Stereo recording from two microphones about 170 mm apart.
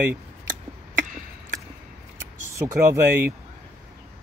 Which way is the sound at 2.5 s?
15° right (ahead or behind).